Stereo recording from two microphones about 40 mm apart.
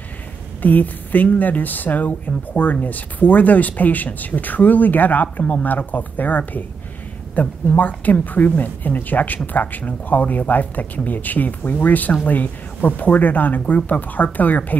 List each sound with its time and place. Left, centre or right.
0.6 s speech: left
7.6 s speech: left